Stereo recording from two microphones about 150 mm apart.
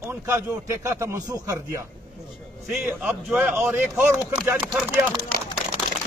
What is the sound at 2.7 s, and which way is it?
A man's voice, 5° right (ahead or behind).